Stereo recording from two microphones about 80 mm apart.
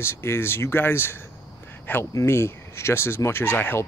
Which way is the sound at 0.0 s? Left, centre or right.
Left.